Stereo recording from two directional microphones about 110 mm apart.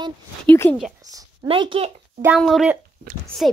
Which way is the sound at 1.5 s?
55° right (ahead or behind).